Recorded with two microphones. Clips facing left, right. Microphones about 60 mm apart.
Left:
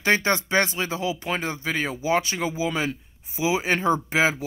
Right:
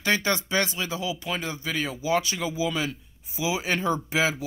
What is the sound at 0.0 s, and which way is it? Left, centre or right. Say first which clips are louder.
Speech: left 3 dB; left.